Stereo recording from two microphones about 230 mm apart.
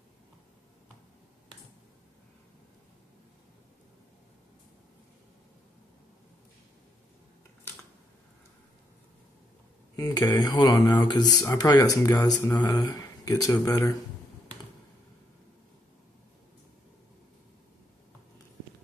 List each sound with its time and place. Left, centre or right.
9.9 s speech: centre